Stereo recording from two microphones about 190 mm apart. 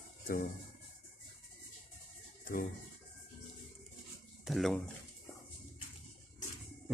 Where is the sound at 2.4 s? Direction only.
45° left (ahead or behind).